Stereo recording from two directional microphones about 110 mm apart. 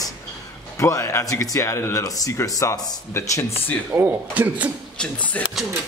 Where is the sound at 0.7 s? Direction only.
30° left (ahead or behind).